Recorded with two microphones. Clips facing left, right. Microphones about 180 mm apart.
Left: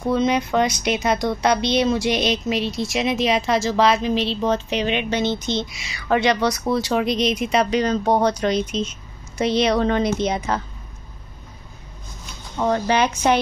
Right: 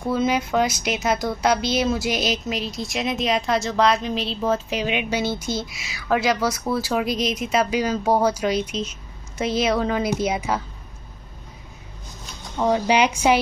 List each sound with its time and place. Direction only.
0.1 s a woman's voice: 5° right (ahead or behind)
12.5 s a woman's voice: 10° right (ahead or behind)